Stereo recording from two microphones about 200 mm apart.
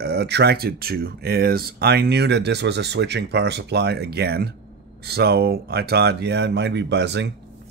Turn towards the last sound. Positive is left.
turn(degrees=-60)  # may be behind; listen again after turning